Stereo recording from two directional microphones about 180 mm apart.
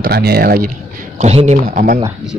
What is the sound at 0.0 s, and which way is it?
Speech, 60° right (ahead or behind).